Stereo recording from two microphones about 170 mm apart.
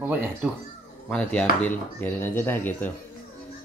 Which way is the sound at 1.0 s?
10° left (ahead or behind).